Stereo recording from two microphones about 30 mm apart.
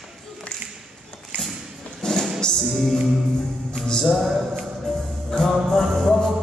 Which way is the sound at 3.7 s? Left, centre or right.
Left.